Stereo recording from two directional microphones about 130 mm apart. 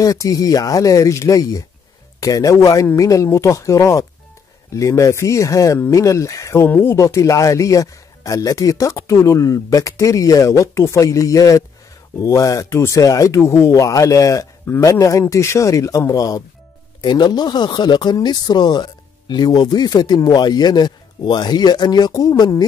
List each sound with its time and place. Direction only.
0.0 s speech: 25° left (ahead or behind)